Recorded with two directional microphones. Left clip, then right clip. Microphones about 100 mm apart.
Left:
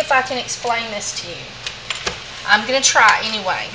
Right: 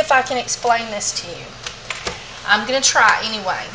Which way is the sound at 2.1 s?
20° right (ahead or behind).